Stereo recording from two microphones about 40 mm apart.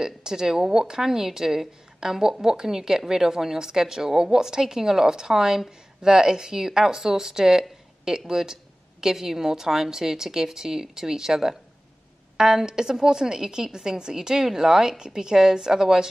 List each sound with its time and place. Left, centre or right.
0.0 s speech: centre